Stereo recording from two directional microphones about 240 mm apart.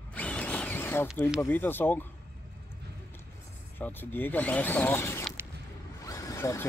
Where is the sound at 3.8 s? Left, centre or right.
Centre.